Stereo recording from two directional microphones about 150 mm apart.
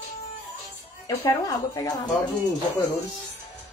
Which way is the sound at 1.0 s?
20° left (ahead or behind).